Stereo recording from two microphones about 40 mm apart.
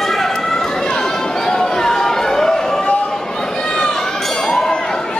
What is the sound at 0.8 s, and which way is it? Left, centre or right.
Chatter, centre.